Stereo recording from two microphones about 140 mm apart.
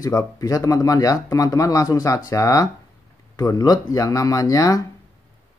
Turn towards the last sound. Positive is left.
turn(degrees=25)  # may be behind; listen again after turning